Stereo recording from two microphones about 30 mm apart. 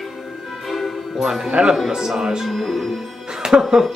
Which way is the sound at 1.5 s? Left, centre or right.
Right.